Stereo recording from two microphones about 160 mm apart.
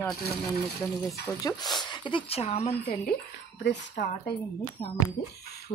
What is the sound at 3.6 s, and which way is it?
Speech, 90° left.